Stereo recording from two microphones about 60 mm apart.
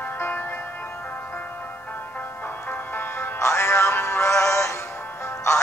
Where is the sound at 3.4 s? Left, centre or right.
Left.